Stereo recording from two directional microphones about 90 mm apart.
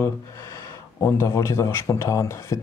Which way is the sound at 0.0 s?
30° left (ahead or behind).